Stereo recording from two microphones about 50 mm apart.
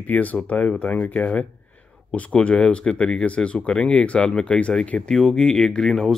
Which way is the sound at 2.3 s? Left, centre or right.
Centre.